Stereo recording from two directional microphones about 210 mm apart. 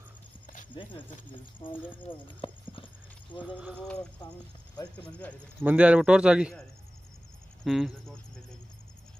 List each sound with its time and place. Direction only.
0.7 s speech: 25° left (ahead or behind)
2.0 s a sound: 25° left (ahead or behind)
3.4 s a man's voice: 5° right (ahead or behind)
4.8 s speech: 20° left (ahead or behind)
5.6 s a man's voice: 5° right (ahead or behind)
7.6 s a man's voice: centre (ahead or behind)